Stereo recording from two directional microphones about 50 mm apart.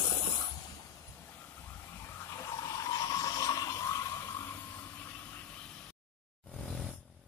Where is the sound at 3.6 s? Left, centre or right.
Left.